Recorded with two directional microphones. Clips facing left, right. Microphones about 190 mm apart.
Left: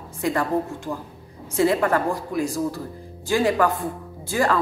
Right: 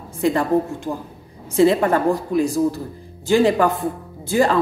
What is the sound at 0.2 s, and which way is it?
Speech, 25° right (ahead or behind).